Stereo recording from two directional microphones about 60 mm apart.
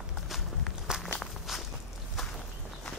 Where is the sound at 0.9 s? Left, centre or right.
Centre.